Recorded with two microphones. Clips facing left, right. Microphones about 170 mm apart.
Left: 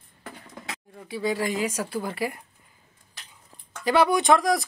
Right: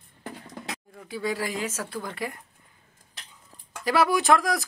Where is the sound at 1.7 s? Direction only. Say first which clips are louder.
Left 4 dB; 10° left (ahead or behind).